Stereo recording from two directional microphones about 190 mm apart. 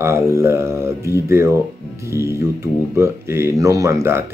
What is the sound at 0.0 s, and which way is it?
Speech, 15° right (ahead or behind).